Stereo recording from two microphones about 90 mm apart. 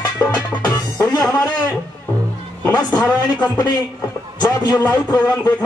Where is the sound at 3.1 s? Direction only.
50° left (ahead or behind).